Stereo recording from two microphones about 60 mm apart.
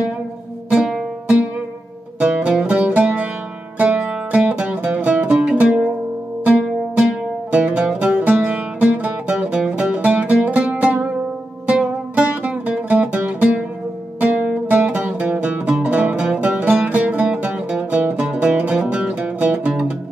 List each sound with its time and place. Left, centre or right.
0.7 s music: centre
2.1 s music: centre
14.2 s music: right